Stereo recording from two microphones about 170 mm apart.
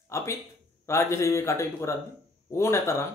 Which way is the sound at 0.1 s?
15° left (ahead or behind).